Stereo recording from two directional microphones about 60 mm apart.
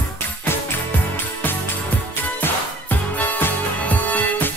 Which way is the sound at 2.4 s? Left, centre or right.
Left.